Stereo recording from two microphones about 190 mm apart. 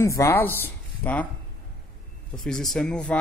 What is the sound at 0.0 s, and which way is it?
Speech, 15° left (ahead or behind).